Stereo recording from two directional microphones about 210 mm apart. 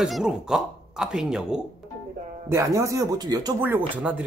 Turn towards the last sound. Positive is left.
turn(degrees=-10)  # may be behind; listen again after turning